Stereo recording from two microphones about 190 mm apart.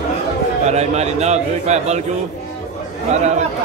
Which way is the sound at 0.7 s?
35° right (ahead or behind).